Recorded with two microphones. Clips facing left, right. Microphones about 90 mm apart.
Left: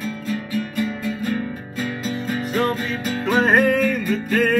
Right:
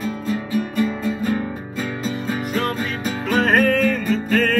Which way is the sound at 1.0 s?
30° right (ahead or behind).